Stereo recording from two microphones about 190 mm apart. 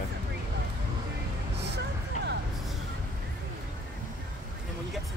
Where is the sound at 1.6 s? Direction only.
65° right (ahead or behind).